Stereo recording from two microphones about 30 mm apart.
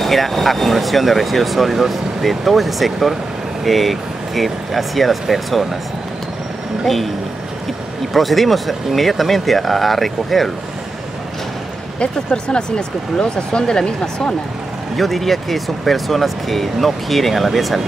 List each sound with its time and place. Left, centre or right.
0.0 s speech: centre
6.8 s speech: centre
8.1 s speech: centre
12.0 s speech: left
15.0 s speech: centre